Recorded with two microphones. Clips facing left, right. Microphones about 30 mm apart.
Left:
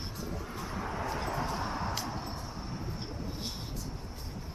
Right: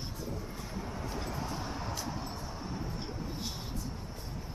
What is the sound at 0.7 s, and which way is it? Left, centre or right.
Vehicle, left.